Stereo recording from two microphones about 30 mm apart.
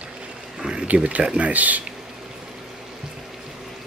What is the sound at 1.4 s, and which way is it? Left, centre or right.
Speech, right.